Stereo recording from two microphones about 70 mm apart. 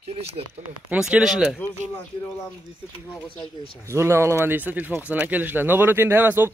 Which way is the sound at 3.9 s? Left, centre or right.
Right.